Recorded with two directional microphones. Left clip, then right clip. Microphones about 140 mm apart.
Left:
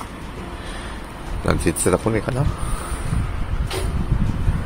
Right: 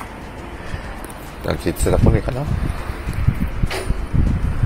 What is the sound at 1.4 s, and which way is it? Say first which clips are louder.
Speech: left 1 dB; 45° left (ahead or behind).